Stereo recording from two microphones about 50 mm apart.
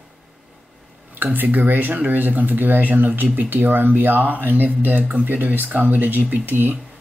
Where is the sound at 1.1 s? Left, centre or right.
Right.